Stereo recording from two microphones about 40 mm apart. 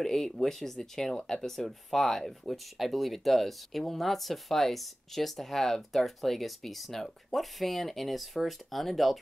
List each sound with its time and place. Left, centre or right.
0.0 s speech: centre